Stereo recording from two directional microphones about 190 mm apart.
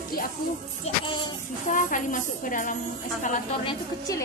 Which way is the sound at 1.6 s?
45° left (ahead or behind).